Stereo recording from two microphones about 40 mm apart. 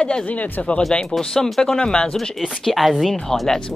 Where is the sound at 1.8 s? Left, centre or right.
Left.